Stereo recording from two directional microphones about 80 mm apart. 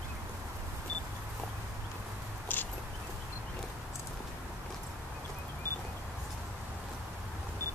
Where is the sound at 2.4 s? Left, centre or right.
Left.